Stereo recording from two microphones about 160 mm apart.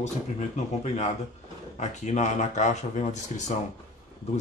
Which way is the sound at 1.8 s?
45° left (ahead or behind).